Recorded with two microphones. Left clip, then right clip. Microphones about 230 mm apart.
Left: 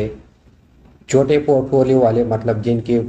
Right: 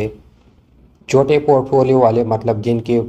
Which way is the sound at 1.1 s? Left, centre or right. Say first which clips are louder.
Right 2 dB; right.